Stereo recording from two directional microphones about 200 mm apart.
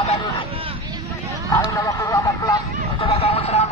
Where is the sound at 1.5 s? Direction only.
15° left (ahead or behind).